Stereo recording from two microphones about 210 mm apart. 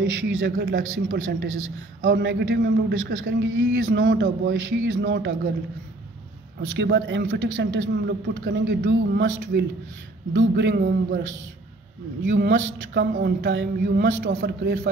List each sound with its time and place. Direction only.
0.0 s a man's voice: 65° right (ahead or behind)
6.8 s a man's voice: 55° right (ahead or behind)